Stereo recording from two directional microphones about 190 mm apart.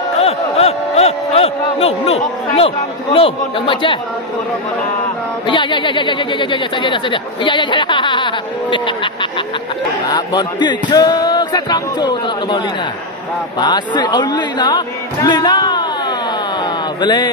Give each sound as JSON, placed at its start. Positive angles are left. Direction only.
{"t": 0.2, "sound": "a sound", "side_deg": 30}
{"t": 5.5, "sound": "speech", "side_deg": 25}
{"t": 17.0, "sound": "speech", "side_deg": 20}